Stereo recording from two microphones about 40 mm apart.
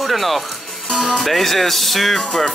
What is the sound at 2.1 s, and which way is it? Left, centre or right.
Speech, centre.